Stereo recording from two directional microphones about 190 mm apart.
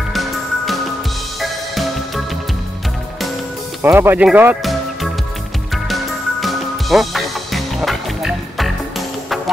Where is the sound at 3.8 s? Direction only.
10° right (ahead or behind).